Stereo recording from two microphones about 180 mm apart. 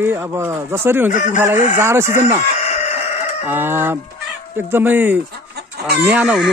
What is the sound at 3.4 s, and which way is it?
Speech, 10° right (ahead or behind).